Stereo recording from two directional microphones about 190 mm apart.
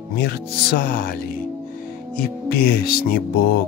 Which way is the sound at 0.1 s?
55° left (ahead or behind).